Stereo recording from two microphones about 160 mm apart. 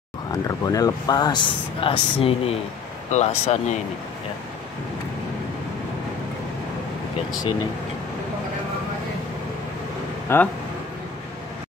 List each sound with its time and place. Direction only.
0.3 s speech: 20° left (ahead or behind); by 3.8 s 45° left (ahead or behind)
10.2 s speech: 15° left (ahead or behind)